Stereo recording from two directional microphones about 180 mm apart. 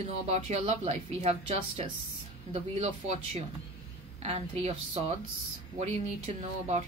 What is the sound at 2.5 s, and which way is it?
Speech, 35° right (ahead or behind).